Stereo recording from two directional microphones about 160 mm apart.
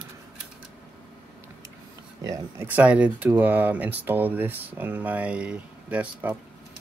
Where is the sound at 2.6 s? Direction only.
10° right (ahead or behind).